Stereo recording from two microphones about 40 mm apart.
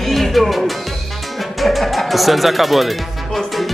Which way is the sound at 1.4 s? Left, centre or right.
Centre.